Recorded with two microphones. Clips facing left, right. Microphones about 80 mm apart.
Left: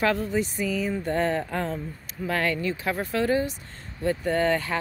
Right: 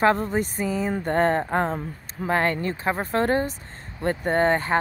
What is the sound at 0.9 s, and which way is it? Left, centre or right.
Speech, right.